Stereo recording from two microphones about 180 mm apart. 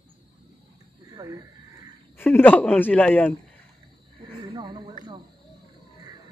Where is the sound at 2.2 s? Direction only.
10° left (ahead or behind).